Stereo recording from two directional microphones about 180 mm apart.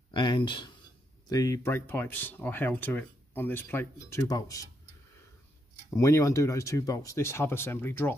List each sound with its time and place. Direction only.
0.1 s speech: 25° left (ahead or behind)
5.9 s speech: 15° left (ahead or behind)